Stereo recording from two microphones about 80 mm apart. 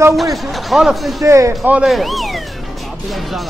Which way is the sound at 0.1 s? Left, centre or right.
Centre.